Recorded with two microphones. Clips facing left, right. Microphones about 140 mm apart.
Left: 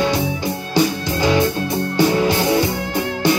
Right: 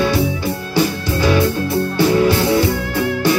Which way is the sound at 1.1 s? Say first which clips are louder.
Right 1 dB; 20° left (ahead or behind).